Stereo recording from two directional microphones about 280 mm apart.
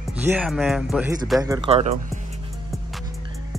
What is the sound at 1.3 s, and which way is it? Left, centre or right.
Speech, centre.